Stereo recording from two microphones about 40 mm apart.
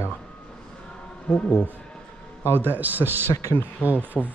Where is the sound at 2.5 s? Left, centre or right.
Right.